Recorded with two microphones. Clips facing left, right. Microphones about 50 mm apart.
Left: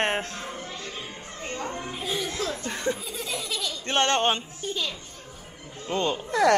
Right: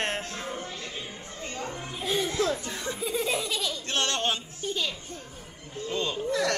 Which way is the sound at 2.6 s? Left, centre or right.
Left.